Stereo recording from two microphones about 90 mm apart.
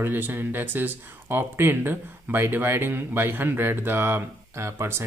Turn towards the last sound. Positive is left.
turn(degrees=-30)  # may be behind; listen again after turning